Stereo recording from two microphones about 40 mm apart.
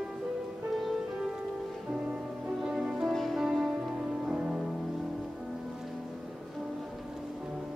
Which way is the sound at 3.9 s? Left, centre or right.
Centre.